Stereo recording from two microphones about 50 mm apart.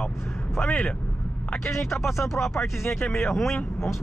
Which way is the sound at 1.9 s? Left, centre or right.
Centre.